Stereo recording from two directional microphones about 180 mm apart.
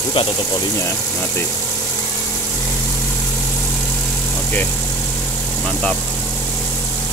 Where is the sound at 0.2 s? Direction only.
30° left (ahead or behind).